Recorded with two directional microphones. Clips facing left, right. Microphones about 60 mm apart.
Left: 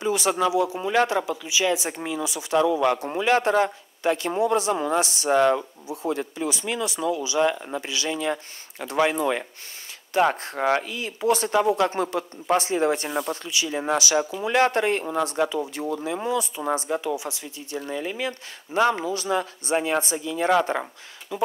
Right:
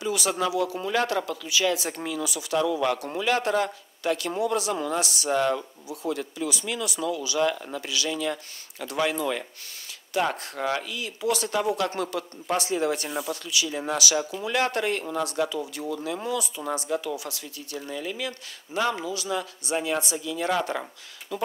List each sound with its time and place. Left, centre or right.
0.0 s speech: left
21.3 s speech: centre